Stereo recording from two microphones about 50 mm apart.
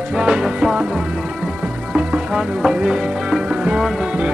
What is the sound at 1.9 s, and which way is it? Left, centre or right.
Music, centre.